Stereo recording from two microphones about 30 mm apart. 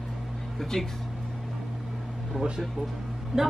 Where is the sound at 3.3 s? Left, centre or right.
Centre.